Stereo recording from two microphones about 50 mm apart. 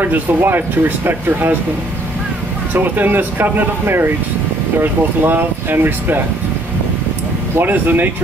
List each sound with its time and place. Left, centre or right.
0.0 s speech: right
2.7 s speech: right
7.5 s speech: right